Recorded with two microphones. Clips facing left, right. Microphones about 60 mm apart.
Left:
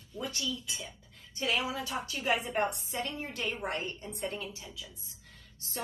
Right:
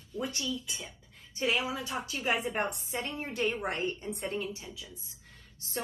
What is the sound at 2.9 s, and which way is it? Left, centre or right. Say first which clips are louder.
A woman's voice: right 1 dB; right.